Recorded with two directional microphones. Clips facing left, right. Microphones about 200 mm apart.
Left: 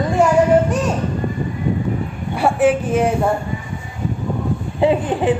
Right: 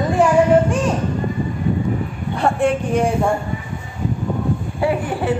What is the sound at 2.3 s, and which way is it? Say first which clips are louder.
Speech: left 3 dB; 5° left (ahead or behind).